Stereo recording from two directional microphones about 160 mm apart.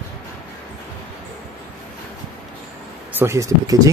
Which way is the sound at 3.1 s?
20° right (ahead or behind).